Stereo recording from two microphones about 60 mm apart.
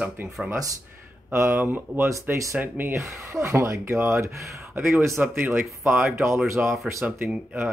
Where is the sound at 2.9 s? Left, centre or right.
Right.